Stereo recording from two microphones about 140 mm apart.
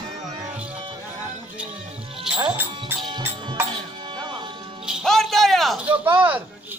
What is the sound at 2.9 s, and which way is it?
Music, 15° right (ahead or behind).